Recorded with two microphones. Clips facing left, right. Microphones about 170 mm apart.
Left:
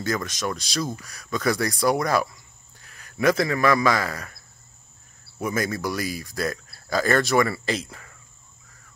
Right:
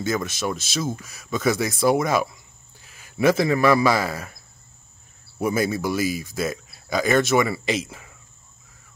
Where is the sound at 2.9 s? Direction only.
5° right (ahead or behind).